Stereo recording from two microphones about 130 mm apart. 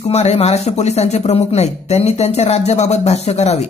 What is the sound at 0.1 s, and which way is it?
Speech, 55° left (ahead or behind).